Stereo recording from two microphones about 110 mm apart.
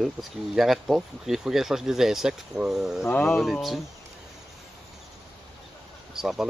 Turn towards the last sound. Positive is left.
turn(degrees=-5)  # may be behind; listen again after turning